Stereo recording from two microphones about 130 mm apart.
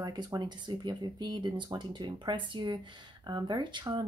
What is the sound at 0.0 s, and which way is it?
A woman's voice, 30° right (ahead or behind).